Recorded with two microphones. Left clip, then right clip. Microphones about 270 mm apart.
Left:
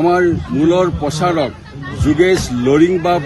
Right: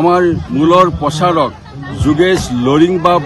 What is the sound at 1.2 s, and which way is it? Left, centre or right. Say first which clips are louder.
Speech: right 4 dB; right.